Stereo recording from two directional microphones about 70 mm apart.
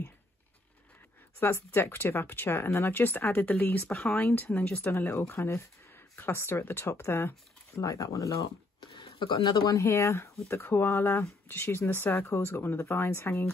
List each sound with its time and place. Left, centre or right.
1.4 s speech: left
4.9 s speech: left
7.8 s speech: left
9.3 s speech: left
9.8 s speech: left
10.7 s speech: left